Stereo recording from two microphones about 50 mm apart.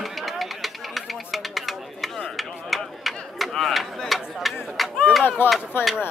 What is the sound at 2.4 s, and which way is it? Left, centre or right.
Chop, centre.